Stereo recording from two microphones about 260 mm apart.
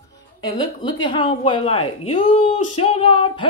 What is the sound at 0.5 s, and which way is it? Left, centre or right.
A woman's voice, centre.